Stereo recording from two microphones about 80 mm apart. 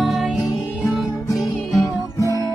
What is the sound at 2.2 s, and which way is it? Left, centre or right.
Music, left.